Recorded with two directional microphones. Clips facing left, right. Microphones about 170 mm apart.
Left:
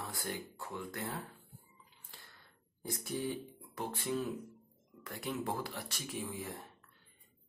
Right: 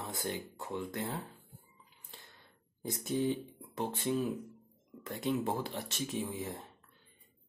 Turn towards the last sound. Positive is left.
turn(degrees=-20)  # may be behind; listen again after turning